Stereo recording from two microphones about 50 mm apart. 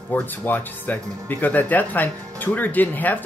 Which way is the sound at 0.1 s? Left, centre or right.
Left.